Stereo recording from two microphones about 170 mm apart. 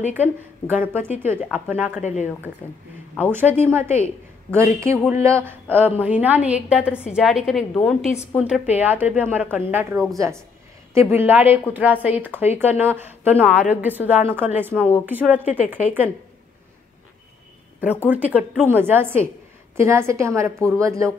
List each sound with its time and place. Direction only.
0.1 s a woman's voice: 10° right (ahead or behind)
2.0 s a woman's voice: 45° left (ahead or behind)
3.3 s a woman's voice: 10° right (ahead or behind)
8.5 s a woman's voice: 10° right (ahead or behind)
14.7 s a woman's voice: 10° left (ahead or behind)
15.0 s a woman's voice: 10° right (ahead or behind)
18.0 s a woman's voice: 10° right (ahead or behind)